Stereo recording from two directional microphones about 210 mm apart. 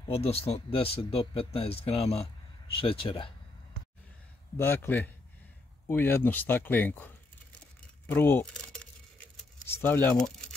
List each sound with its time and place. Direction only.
0.0 s speech: 30° left (ahead or behind)
4.6 s speech: 10° left (ahead or behind)
8.1 s speech: 10° left (ahead or behind)